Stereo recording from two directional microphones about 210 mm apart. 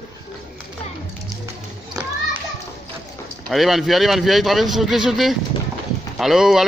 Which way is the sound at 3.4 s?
Centre (ahead or behind).